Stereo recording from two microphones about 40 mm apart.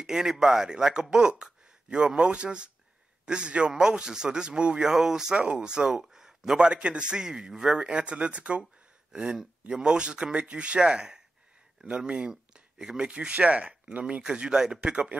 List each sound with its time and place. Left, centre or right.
0.0 s a man's voice: centre
6.7 s a man's voice: right
7.8 s a man's voice: right
10.8 s speech: centre
12.3 s speech: centre
13.3 s speech: right
14.2 s a man's voice: right